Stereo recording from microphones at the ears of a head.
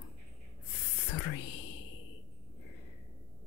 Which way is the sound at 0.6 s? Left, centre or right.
Left.